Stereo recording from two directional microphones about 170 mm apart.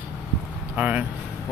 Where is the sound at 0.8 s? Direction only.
10° right (ahead or behind).